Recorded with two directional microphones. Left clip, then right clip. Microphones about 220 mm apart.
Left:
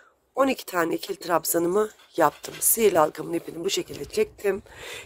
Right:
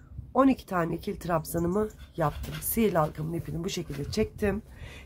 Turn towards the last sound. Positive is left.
turn(degrees=45)  # may be behind; listen again after turning